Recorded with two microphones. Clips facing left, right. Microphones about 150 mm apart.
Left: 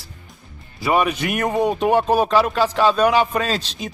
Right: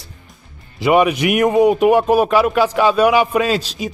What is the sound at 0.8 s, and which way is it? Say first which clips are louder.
Speech: right 5 dB; 15° right (ahead or behind).